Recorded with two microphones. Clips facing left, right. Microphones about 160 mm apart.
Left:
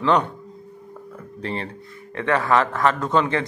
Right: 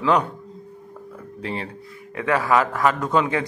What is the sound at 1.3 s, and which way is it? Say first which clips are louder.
A man's voice: left 1 dB; 5° right (ahead or behind).